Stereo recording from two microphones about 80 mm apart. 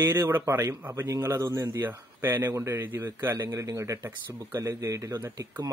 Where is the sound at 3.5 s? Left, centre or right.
Right.